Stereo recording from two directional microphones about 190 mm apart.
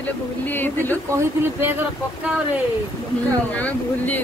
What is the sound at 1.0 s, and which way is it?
Speech, 15° right (ahead or behind).